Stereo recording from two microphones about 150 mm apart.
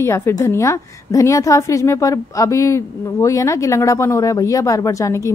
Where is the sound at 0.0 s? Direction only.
15° left (ahead or behind).